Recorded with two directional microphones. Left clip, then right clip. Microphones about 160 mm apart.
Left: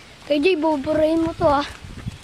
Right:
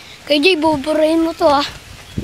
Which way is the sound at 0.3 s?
Centre (ahead or behind).